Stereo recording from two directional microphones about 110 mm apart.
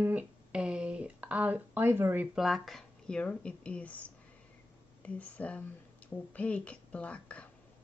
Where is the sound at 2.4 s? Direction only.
Centre (ahead or behind).